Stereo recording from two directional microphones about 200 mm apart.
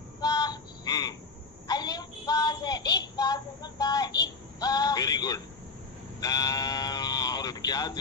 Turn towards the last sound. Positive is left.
turn(degrees=20)  # may be behind; listen again after turning